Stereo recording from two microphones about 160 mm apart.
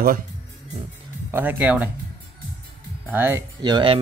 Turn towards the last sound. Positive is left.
turn(degrees=-30)  # may be behind; listen again after turning